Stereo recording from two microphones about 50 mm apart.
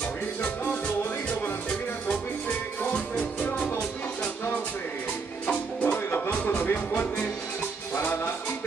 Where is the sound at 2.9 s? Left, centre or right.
Left.